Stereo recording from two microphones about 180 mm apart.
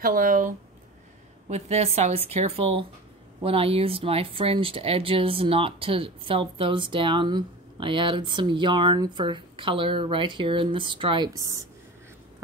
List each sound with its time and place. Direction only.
0.0 s speech: 50° right (ahead or behind)
1.5 s speech: 35° right (ahead or behind); by 11.6 s 20° right (ahead or behind)